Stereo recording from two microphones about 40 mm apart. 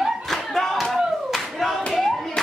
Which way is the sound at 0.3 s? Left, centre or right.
Centre.